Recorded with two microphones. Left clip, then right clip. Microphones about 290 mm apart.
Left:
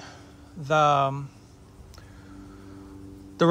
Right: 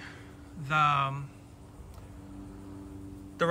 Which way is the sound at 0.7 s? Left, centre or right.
Centre.